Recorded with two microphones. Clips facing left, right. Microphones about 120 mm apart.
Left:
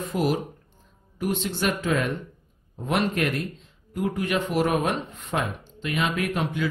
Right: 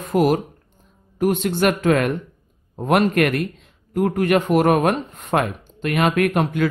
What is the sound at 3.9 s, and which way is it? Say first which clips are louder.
Speech: right 8 dB; 55° right (ahead or behind).